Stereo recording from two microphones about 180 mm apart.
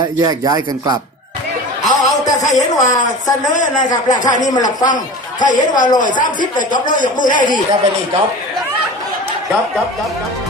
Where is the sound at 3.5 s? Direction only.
45° left (ahead or behind).